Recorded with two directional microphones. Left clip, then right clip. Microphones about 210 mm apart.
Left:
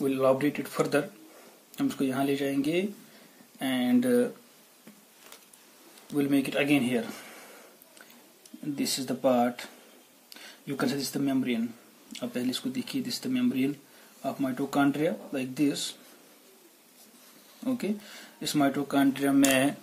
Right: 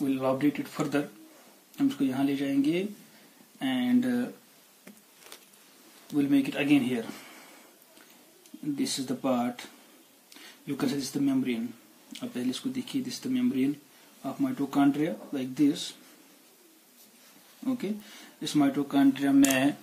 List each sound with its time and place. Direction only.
0.0 s speech: 40° left (ahead or behind)
6.1 s speech: 40° left (ahead or behind)
8.7 s speech: 40° left (ahead or behind)
10.7 s speech: 40° left (ahead or behind)
18.4 s speech: 40° left (ahead or behind)